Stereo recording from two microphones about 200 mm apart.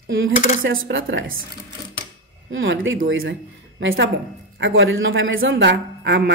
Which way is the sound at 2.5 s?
70° right (ahead or behind).